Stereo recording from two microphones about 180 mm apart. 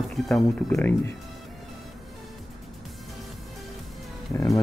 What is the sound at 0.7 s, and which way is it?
Speech, 15° left (ahead or behind).